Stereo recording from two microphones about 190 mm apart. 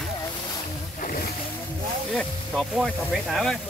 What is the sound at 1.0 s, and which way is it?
Boat, 45° left (ahead or behind).